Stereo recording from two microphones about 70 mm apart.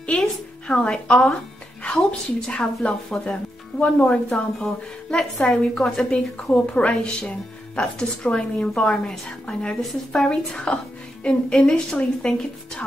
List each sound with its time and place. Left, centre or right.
0.7 s a woman's voice: centre